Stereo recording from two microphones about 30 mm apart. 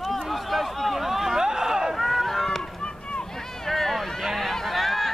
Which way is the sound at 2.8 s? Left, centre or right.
Left.